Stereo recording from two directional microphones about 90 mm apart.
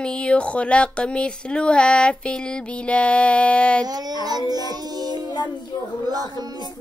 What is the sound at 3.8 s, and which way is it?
Music, 50° right (ahead or behind).